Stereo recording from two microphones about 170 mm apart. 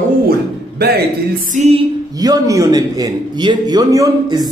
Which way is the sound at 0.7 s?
65° right (ahead or behind).